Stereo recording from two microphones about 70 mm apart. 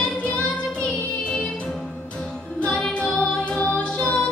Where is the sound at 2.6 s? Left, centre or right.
Centre.